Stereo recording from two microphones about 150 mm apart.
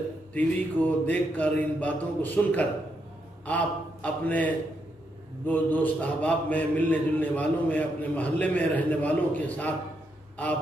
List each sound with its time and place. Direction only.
0.3 s a man's voice: 10° left (ahead or behind)